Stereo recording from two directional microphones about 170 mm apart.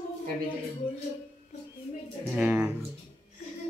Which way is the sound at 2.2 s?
10° right (ahead or behind).